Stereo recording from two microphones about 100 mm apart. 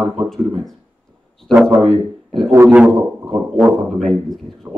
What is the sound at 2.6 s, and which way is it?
A man's voice, 15° right (ahead or behind).